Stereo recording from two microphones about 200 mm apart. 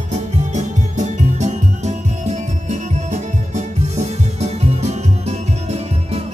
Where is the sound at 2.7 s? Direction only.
35° right (ahead or behind).